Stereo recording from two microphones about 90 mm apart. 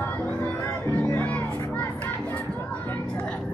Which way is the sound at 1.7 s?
15° left (ahead or behind).